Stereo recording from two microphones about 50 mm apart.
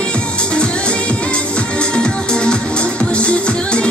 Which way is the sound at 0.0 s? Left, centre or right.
Left.